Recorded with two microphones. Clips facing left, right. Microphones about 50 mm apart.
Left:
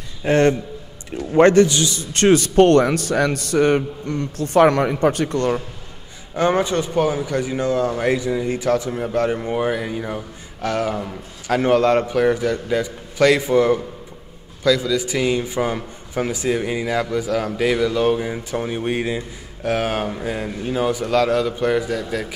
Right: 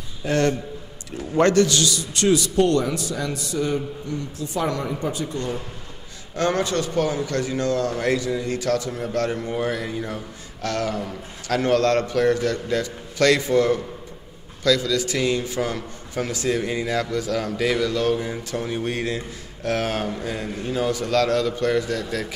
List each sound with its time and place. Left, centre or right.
0.2 s a man's voice: left
2.0 s a man's voice: left
6.3 s a man's voice: centre